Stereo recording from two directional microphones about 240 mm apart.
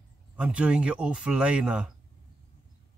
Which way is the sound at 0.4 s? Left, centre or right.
Centre.